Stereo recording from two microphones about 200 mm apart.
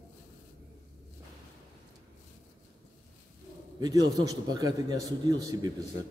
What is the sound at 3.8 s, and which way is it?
A man's voice, 20° right (ahead or behind).